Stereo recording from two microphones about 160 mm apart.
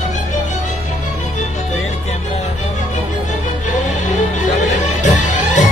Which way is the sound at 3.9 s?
45° left (ahead or behind).